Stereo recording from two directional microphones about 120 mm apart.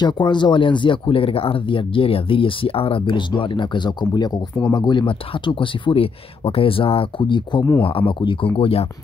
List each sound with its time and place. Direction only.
0.0 s speech: 40° left (ahead or behind)